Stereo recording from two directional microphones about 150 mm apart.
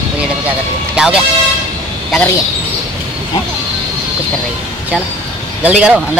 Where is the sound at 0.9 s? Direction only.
5° right (ahead or behind).